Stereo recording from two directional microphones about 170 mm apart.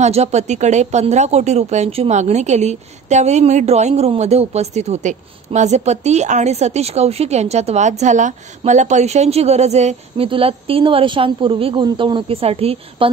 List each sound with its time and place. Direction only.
0.0 s speech: 40° right (ahead or behind)